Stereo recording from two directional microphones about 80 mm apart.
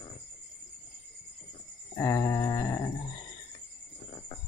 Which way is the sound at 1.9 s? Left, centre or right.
Left.